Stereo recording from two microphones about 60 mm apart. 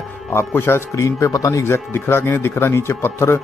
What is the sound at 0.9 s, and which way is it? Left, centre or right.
Speech, left.